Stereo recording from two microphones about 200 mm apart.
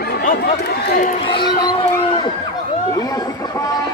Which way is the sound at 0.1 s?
50° left (ahead or behind).